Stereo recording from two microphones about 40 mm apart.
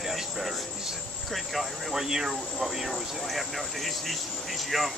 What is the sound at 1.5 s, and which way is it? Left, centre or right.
Speech, centre.